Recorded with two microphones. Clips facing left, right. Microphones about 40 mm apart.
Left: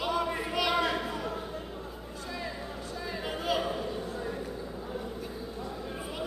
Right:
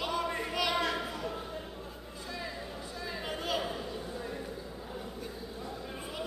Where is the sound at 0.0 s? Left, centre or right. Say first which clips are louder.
Left 3 dB; centre.